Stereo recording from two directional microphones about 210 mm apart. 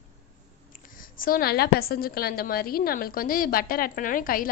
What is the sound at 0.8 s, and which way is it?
A woman's voice, 40° left (ahead or behind).